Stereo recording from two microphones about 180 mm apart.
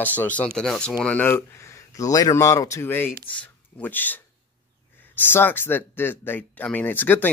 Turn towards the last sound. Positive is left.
turn(degrees=10)  # may be behind; listen again after turning